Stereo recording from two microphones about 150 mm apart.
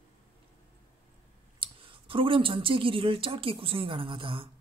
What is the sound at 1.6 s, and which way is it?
A woman's voice, 35° right (ahead or behind).